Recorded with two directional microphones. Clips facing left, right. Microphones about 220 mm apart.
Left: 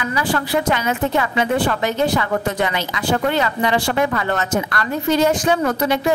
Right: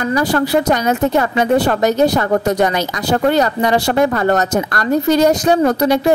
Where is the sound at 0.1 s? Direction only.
40° right (ahead or behind).